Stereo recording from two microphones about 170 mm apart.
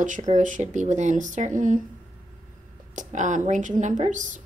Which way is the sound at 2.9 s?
45° right (ahead or behind).